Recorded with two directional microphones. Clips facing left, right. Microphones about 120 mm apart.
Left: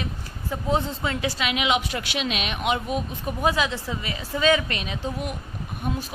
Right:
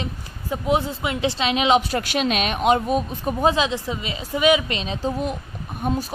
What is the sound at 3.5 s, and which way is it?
A woman's voice, 20° right (ahead or behind).